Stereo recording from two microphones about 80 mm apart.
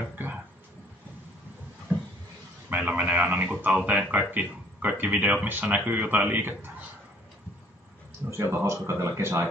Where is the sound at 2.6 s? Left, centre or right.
Right.